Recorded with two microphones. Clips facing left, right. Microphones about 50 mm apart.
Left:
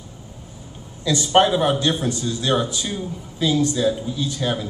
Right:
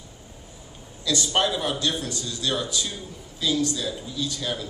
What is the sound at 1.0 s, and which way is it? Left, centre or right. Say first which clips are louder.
A man's voice: left 7 dB; left.